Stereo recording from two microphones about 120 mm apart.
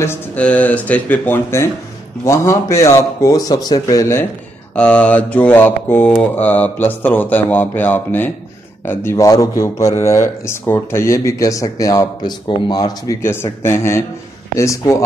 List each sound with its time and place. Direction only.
0.4 s mantra: 10° left (ahead or behind)
2.2 s speech: 25° left (ahead or behind)
4.7 s mantra: 10° left (ahead or behind)
8.8 s speech: 20° left (ahead or behind)
13.2 s speech: 20° left (ahead or behind)